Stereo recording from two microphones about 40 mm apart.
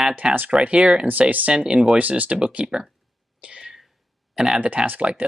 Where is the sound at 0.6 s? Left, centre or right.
Right.